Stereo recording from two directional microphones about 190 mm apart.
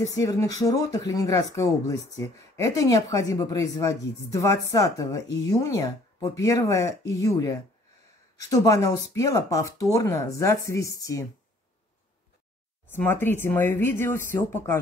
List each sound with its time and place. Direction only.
0.1 s speech: 15° left (ahead or behind)
12.9 s speech: 10° left (ahead or behind)